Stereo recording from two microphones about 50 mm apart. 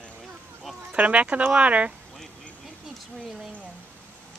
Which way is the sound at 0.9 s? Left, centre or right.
Right.